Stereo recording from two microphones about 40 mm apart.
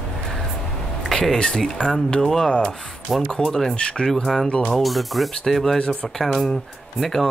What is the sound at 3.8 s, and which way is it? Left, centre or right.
Speech, left.